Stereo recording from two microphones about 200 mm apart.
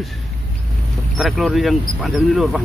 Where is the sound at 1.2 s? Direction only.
Centre (ahead or behind).